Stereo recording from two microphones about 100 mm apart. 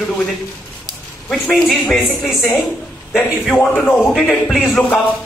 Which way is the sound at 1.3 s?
Centre (ahead or behind).